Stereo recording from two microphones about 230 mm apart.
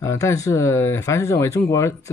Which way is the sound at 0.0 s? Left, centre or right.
Centre.